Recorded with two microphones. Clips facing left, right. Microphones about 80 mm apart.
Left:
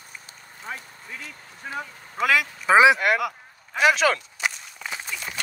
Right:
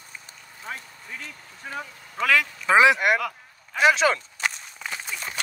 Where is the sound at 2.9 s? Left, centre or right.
Centre.